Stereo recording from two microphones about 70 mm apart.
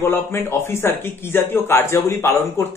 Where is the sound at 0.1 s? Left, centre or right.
Left.